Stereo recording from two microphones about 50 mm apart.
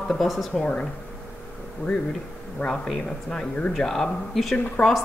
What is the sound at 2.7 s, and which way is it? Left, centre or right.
Speech, centre.